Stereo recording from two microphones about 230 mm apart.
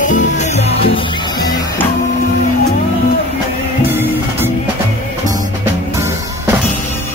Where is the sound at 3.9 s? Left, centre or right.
Centre.